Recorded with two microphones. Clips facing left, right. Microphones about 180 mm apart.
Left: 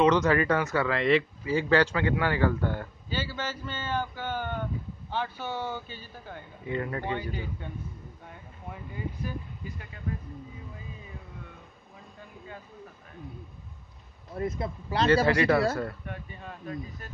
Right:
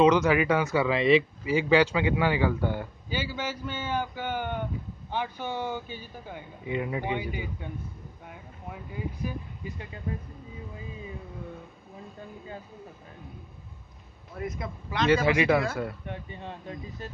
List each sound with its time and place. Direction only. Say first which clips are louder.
0.0 s speech: right 2 dB; 10° right (ahead or behind)
14.3 s speech: left 3 dB; 30° left (ahead or behind)
15.2 s speech: even; 10° right (ahead or behind)
16.1 s speech: right 3 dB; 25° right (ahead or behind)